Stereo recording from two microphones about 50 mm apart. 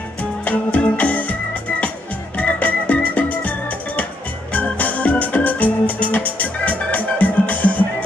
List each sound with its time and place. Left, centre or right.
0.2 s music: left
2.3 s music: left
4.5 s organ: left